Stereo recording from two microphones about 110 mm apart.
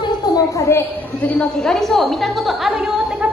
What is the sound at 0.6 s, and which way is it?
Speech, 25° left (ahead or behind).